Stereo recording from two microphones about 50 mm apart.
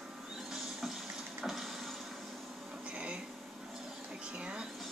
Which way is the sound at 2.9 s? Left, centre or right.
Right.